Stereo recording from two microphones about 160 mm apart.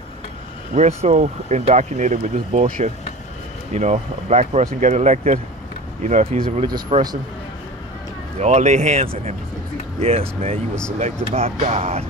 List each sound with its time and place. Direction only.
0.7 s speech: 45° right (ahead or behind)
6.6 s speech: 30° right (ahead or behind)
8.4 s speech: 45° right (ahead or behind)